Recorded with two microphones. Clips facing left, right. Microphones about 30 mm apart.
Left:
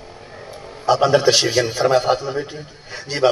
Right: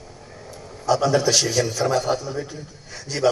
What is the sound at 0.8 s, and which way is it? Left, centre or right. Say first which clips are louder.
A man's voice: left 4 dB; left.